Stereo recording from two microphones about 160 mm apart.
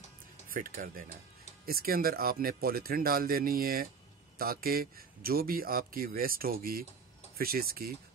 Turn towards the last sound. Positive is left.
turn(degrees=-70)  # may be behind; listen again after turning